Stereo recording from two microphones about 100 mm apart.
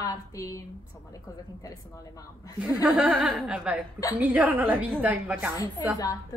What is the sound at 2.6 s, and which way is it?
A woman's voice, 15° right (ahead or behind).